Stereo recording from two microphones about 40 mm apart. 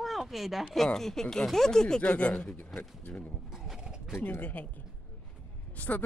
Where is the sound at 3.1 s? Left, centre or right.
Left.